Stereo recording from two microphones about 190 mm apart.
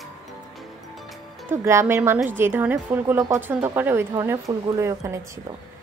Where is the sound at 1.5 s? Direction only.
15° right (ahead or behind).